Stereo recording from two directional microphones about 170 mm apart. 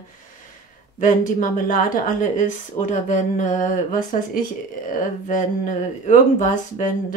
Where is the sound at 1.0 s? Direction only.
50° left (ahead or behind).